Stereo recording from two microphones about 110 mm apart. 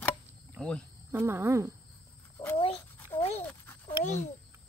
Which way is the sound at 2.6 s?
75° left (ahead or behind).